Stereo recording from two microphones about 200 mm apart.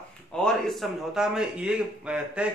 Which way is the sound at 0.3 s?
5° left (ahead or behind).